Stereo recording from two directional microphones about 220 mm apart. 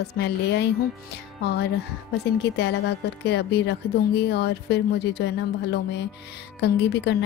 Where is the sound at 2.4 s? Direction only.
50° left (ahead or behind).